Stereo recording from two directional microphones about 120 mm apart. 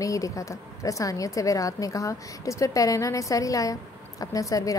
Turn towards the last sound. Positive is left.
turn(degrees=30)  # may be behind; listen again after turning